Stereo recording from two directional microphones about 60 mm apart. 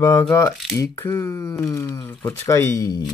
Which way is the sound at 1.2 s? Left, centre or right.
Left.